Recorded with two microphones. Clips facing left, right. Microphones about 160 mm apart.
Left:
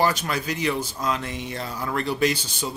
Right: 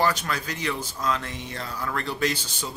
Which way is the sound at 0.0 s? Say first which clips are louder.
Left 2 dB; 15° left (ahead or behind).